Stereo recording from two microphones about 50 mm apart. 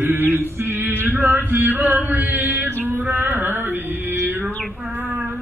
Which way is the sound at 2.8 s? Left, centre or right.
Right.